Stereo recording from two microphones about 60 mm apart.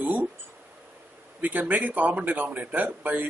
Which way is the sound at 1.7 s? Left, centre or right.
Right.